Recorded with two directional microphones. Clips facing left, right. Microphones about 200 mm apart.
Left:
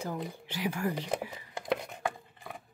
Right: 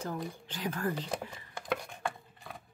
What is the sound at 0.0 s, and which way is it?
Speech, 10° left (ahead or behind).